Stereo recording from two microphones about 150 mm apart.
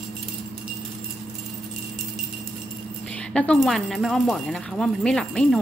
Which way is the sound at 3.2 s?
5° left (ahead or behind).